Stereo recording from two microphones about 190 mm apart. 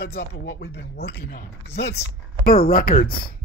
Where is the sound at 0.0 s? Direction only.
55° left (ahead or behind).